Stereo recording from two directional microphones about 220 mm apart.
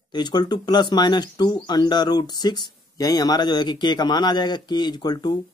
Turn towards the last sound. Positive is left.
turn(degrees=20)  # may be behind; listen again after turning